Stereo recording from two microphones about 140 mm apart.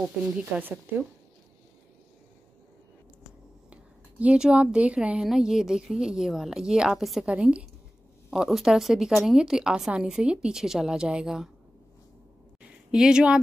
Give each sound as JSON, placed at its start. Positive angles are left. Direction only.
{"t": 0.2, "sound": "speech", "side_deg": -15}
{"t": 3.7, "sound": "speech", "side_deg": -10}
{"t": 12.9, "sound": "speech", "side_deg": -5}